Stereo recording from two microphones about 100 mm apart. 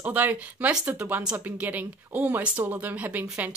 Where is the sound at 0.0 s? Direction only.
15° right (ahead or behind).